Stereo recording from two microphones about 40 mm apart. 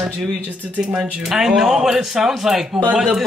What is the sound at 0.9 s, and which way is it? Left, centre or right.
Speech, centre.